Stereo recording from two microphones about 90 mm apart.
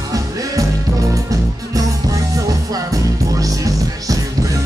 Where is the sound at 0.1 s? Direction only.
40° right (ahead or behind).